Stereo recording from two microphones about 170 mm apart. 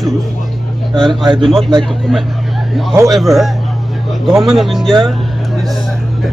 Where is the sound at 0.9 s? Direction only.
30° right (ahead or behind).